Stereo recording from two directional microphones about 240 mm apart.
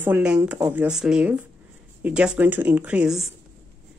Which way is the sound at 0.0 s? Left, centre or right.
Centre.